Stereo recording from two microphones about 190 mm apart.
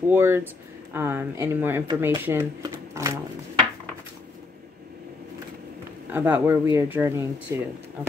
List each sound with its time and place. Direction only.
0.0 s speech: 10° right (ahead or behind)
6.1 s speech: 10° right (ahead or behind)